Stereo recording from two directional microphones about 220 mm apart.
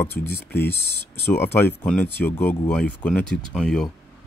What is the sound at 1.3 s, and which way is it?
Speech, 10° left (ahead or behind).